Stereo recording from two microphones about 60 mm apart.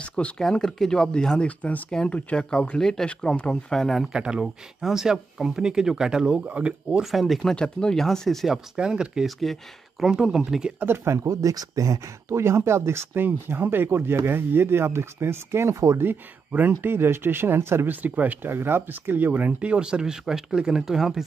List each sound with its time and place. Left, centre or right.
0.0 s a sound: centre
0.4 s speech: centre
4.1 s speech: centre
6.4 s speech: right
7.0 s speech: centre
7.5 s speech: centre
8.5 s speech: centre
9.4 s speech: centre
10.1 s speech: centre
10.8 s speech: right
11.2 s speech: right
16.0 s speech: right
16.8 s speech: right
18.0 s speech: right; by 21.2 s centre